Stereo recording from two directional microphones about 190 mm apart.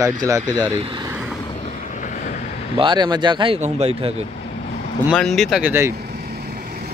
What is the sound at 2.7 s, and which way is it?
Speech, 25° right (ahead or behind).